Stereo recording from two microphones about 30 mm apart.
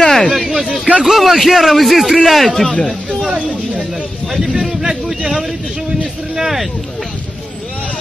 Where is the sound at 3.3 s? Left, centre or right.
Right.